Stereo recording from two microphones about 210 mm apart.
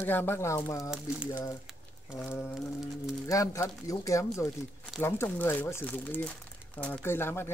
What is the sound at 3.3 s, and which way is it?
Speech, 15° left (ahead or behind).